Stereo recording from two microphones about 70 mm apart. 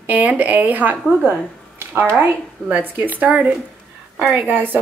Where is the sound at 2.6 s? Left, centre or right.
Right.